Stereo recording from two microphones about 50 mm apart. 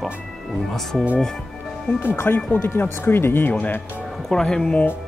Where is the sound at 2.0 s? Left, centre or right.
Left.